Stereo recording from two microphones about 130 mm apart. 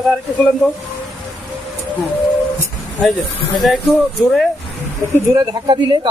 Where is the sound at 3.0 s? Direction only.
Centre (ahead or behind).